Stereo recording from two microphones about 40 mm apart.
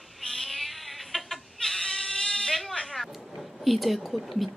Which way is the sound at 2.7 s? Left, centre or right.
Centre.